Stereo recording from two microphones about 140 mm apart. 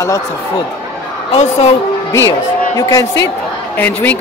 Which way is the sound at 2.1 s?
25° left (ahead or behind).